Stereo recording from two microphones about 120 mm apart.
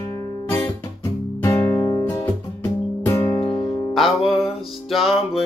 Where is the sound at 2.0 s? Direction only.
25° left (ahead or behind).